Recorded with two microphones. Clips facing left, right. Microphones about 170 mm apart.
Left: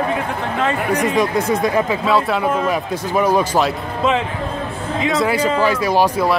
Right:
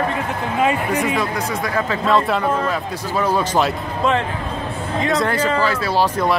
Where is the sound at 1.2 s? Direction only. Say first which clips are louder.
Left 6 dB; 20° left (ahead or behind).